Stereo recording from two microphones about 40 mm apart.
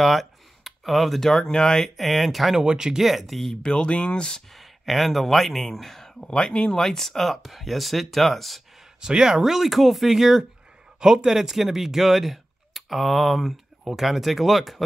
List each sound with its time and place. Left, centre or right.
0.0 s speech: centre
2.0 s speech: centre
2.6 s speech: centre
3.0 s speech: centre
3.6 s speech: left
4.5 s speech: centre
6.3 s speech: left; by 8.6 s centre
9.0 s speech: centre
9.4 s speech: centre